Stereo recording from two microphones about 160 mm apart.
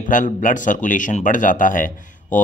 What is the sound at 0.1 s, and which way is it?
Speech, 55° left (ahead or behind).